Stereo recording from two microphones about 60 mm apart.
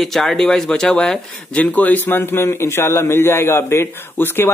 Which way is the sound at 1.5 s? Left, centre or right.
Left.